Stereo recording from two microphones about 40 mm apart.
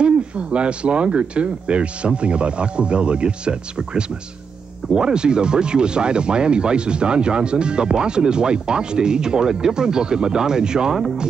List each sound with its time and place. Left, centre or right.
0.0 s speech: right